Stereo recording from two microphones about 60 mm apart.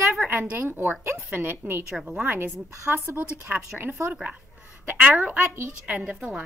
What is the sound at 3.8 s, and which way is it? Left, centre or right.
A woman's voice, right.